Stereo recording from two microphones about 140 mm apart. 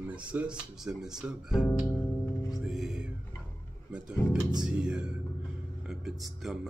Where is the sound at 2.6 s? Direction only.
5° right (ahead or behind).